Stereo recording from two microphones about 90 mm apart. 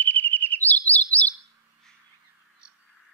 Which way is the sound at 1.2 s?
80° left.